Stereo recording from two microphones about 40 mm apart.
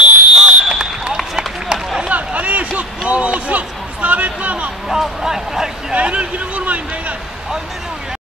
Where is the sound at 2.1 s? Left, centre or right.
Right.